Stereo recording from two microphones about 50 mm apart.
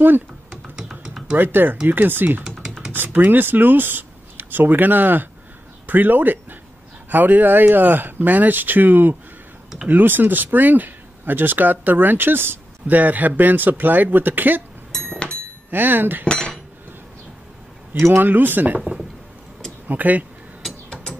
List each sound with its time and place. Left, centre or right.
1.3 s speech: right
12.8 s speech: right
15.7 s speech: right
16.3 s cutlery: centre
17.9 s a man's voice: right
18.2 s speech: right
19.9 s speech: right
20.6 s a sound: centre